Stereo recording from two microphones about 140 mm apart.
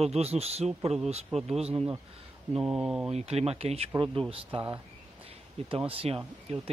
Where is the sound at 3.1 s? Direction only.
45° right (ahead or behind).